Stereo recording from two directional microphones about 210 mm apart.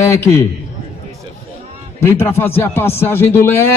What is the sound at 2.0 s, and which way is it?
Speech, 10° left (ahead or behind).